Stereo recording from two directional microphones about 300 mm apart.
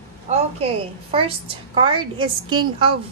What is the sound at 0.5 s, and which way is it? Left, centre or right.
A woman's voice, centre.